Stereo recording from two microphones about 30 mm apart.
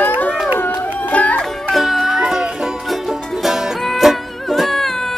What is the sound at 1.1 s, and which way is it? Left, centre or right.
Music, left.